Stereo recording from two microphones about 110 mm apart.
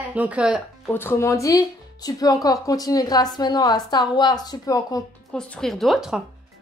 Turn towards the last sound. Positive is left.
turn(degrees=0)  # may be behind; listen again after turning